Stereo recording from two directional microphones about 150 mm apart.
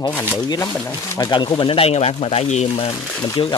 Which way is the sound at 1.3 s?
35° left (ahead or behind).